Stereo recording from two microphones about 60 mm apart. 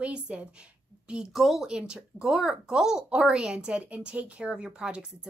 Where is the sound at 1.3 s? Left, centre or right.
Centre.